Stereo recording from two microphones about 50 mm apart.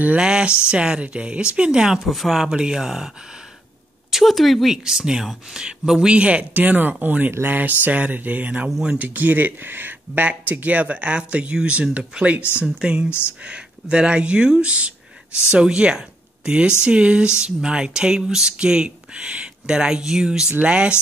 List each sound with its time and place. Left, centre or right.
0.2 s speech: centre
2.0 s a woman's voice: centre
4.1 s a woman's voice: centre
4.8 s speech: centre